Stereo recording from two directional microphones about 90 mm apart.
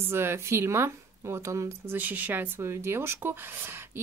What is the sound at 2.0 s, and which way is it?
Speech, 20° right (ahead or behind).